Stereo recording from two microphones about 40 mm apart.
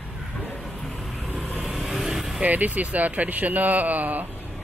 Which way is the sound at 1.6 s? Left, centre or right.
Centre.